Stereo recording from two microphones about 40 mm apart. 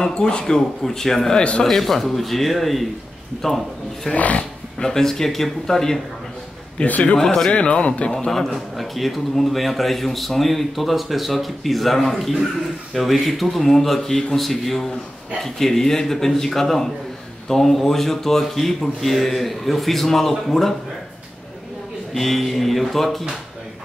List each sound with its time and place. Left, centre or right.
0.0 s a man's voice: left; by 4.1 s centre
4.1 s speech: left
4.7 s a man's voice: centre
6.9 s a man's voice: left
8.7 s a man's voice: centre
22.1 s speech: centre